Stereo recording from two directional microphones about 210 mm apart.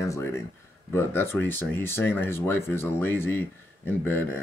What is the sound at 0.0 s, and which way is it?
Speech, 15° left (ahead or behind).